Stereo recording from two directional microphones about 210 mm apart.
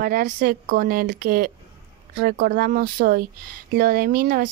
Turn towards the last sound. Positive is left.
turn(degrees=-45)  # may be behind; listen again after turning